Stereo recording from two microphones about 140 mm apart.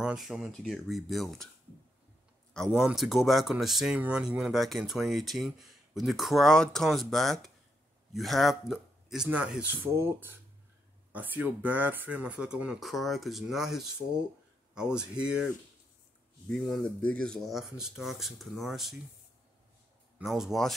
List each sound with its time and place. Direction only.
0.0 s speech: 5° right (ahead or behind)
2.7 s speech: 5° right (ahead or behind)
20.2 s speech: centre (ahead or behind)